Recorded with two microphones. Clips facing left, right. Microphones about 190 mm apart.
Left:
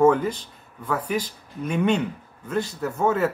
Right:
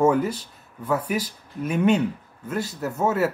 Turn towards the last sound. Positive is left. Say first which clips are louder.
# left 1 dB
turn(degrees=-5)  # may be behind; listen again after turning